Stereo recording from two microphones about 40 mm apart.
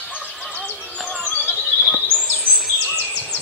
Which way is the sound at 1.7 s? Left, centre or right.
Centre.